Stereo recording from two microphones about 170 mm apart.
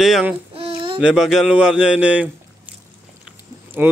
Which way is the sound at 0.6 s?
30° right (ahead or behind).